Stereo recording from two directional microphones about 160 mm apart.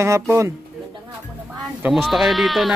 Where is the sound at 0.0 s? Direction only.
15° right (ahead or behind).